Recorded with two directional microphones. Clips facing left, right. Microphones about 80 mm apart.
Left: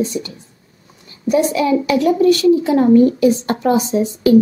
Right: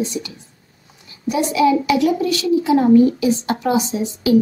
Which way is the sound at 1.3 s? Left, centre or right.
Left.